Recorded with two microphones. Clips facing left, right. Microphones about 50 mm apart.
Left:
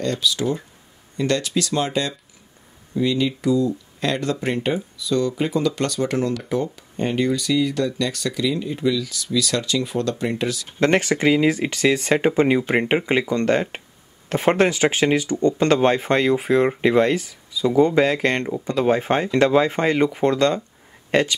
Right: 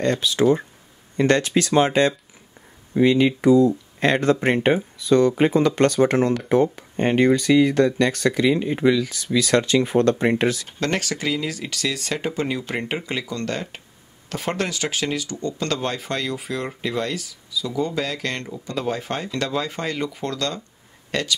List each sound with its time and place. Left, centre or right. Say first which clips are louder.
0.0 s speech: right 4 dB; right
10.8 s speech: left 9 dB; left